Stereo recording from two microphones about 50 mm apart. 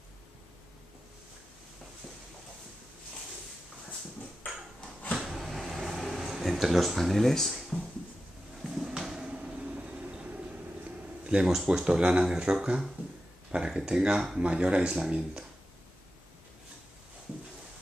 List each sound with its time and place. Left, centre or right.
5.2 s cupboard open or close: centre
6.4 s speech: centre
8.6 s a sound: centre; by 10.4 s right
11.2 s speech: centre